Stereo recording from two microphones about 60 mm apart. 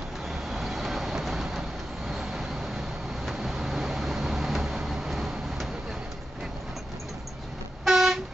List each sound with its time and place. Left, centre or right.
0.3 s vehicle: centre
7.8 s vehicle: centre